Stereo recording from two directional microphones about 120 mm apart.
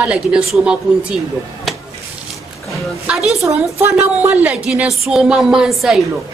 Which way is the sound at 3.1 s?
5° right (ahead or behind).